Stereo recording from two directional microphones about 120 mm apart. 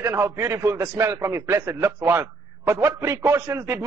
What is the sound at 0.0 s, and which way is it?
A man's voice, 20° right (ahead or behind).